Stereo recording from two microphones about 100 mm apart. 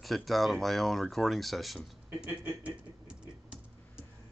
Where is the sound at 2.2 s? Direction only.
15° right (ahead or behind).